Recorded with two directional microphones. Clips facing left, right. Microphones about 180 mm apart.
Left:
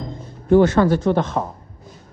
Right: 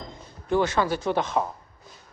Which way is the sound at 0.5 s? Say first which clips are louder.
Left 9 dB; 50° left (ahead or behind).